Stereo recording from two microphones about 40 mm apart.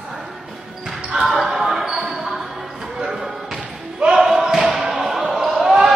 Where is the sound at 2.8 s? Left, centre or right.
Centre.